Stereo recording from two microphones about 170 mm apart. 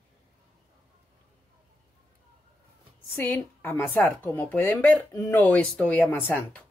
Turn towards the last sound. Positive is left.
turn(degrees=10)  # may be behind; listen again after turning